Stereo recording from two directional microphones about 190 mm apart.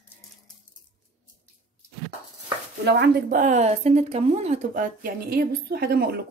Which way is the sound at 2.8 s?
60° right (ahead or behind).